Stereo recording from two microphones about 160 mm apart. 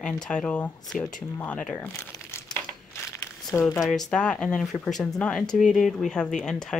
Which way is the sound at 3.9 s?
5° left (ahead or behind).